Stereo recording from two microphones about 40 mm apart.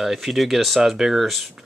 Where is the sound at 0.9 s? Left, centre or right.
Centre.